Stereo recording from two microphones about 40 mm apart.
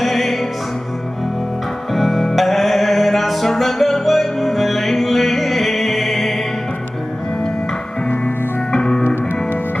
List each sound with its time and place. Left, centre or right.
0.0 s opera: centre
2.0 s music: centre
8.7 s music: left